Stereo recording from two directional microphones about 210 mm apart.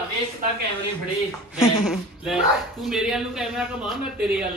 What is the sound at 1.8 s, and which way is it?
Speech, centre (ahead or behind).